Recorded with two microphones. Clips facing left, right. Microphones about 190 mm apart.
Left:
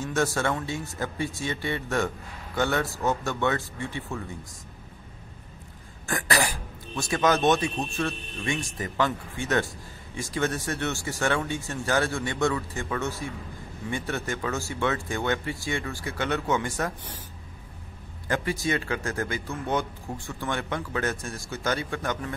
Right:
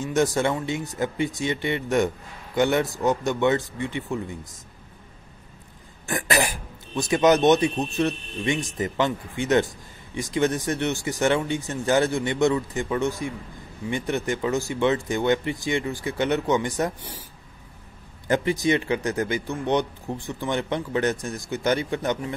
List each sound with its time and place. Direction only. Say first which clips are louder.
0.0 s speech: right 4 dB; 15° right (ahead or behind)
6.0 s throat clearing: right 3 dB; 15° right (ahead or behind)
8.0 s speech: right 8 dB; 20° right (ahead or behind)
18.3 s speech: right 6 dB; 20° right (ahead or behind)